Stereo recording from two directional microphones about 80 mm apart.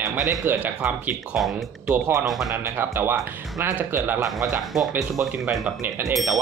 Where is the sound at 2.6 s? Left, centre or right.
Right.